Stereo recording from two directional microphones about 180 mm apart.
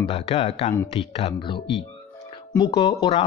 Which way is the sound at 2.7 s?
25° left (ahead or behind).